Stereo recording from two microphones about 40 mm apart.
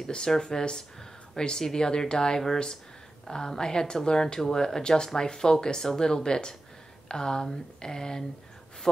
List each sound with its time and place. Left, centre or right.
0.1 s speech: centre